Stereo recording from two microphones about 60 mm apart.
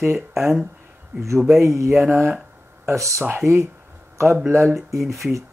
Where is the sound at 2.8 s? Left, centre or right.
Right.